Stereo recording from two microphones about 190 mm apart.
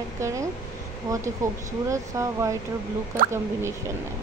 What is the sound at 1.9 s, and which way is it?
Speech, 15° right (ahead or behind).